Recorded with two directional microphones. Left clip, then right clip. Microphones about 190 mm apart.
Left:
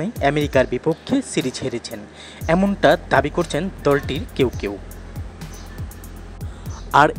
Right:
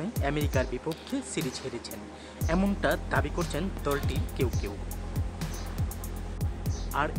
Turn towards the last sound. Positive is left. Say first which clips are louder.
# left 16 dB
turn(degrees=55)  # may be behind; listen again after turning